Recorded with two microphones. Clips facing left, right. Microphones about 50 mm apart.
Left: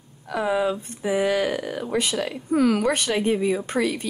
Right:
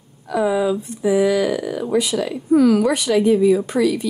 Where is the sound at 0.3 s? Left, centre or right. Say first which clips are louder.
Right 5 dB; left.